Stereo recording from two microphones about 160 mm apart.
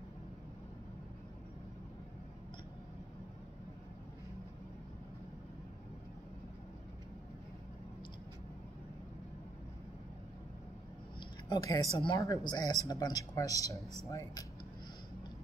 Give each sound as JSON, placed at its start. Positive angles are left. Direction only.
{"t": 11.1, "sound": "speech", "side_deg": 25}